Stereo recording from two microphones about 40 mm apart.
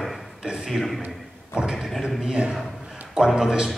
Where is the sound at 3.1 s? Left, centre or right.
Centre.